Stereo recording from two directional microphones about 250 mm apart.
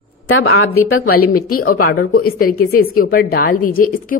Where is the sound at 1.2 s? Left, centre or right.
Left.